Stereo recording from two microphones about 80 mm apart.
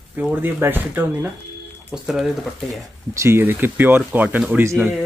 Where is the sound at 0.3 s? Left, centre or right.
Right.